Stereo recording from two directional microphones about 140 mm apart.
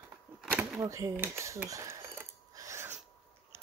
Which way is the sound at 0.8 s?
20° right (ahead or behind).